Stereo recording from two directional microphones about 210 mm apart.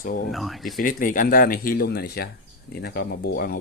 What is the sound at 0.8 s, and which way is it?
Speech, 40° left (ahead or behind).